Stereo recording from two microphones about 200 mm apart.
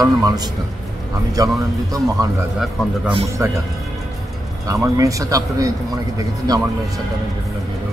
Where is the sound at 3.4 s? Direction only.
15° right (ahead or behind).